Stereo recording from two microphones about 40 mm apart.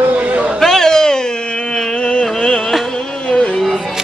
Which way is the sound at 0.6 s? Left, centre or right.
Centre.